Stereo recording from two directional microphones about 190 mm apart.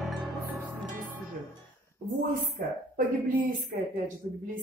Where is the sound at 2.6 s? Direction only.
50° right (ahead or behind).